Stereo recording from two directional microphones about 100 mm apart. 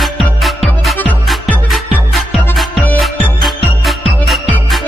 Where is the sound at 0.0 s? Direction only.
Centre (ahead or behind).